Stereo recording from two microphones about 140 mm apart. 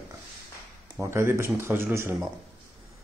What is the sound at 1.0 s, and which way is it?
Speech, 20° right (ahead or behind).